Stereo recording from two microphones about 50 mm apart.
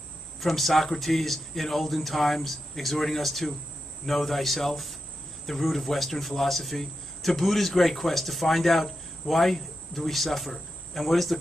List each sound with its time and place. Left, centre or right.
0.4 s speech: centre